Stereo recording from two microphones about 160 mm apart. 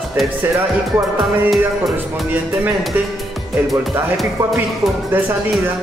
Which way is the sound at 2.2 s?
10° right (ahead or behind).